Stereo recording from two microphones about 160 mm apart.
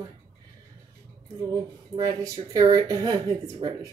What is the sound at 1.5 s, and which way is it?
Speech, 25° right (ahead or behind).